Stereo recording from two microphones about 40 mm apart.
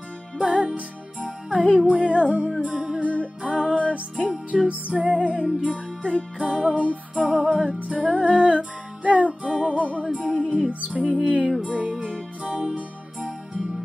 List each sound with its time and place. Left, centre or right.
0.4 s music: right
3.0 s music: right